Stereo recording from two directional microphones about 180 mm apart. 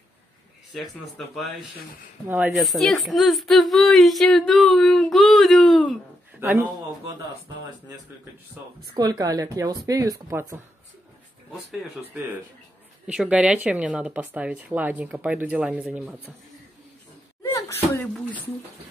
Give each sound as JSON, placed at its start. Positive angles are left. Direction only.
{"t": 1.1, "sound": "speech", "side_deg": 0}
{"t": 2.2, "sound": "speech", "side_deg": -10}
{"t": 6.4, "sound": "speech", "side_deg": -10}
{"t": 8.8, "sound": "speech", "side_deg": -25}
{"t": 13.0, "sound": "speech", "side_deg": -5}
{"t": 17.4, "sound": "a sound", "side_deg": 15}